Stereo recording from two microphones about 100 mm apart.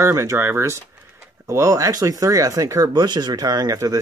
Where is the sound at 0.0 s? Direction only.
30° right (ahead or behind).